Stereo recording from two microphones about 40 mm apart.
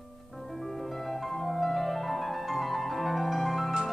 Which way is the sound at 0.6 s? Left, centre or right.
Centre.